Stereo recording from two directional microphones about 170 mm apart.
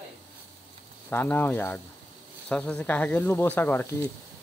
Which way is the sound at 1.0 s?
10° left (ahead or behind).